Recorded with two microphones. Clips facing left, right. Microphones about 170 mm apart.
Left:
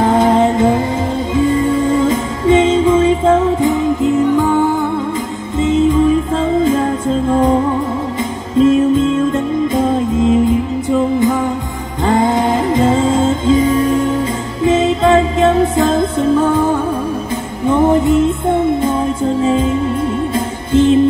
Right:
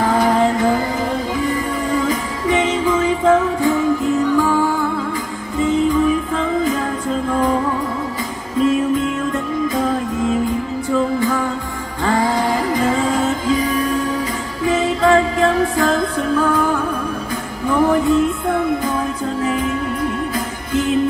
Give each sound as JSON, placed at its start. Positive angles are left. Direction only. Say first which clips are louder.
{"t": 0.0, "sound": "music", "louder": "left 4 dB", "side_deg": 25}
{"t": 8.5, "sound": "music", "louder": "left 6 dB", "side_deg": 25}